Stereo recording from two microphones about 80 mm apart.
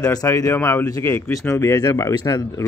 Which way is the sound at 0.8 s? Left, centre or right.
Left.